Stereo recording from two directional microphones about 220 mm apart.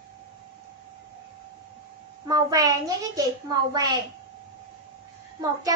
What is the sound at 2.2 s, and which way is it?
A child's voice, 15° right (ahead or behind).